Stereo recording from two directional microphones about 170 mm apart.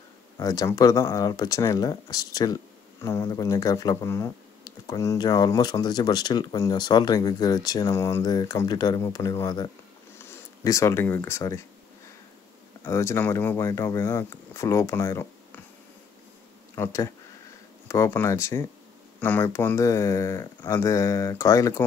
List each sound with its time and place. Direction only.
0.4 s speech: 20° left (ahead or behind)
12.8 s speech: 15° left (ahead or behind)
16.7 s speech: 15° left (ahead or behind)